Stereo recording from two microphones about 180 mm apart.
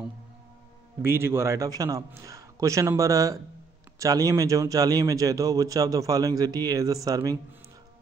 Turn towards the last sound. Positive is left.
turn(degrees=-20)  # may be behind; listen again after turning